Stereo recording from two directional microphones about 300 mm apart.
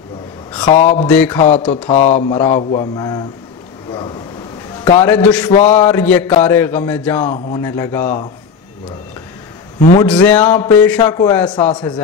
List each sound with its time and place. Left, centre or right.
0.7 s speech: left
1.0 s a sound: centre
1.9 s a man's voice: left
4.8 s a man's voice: centre
5.5 s speech: left
5.8 s a man's voice: centre
10.0 s a man's voice: centre